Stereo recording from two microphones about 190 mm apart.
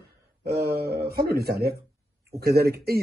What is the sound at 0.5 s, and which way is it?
Speech, 55° right (ahead or behind).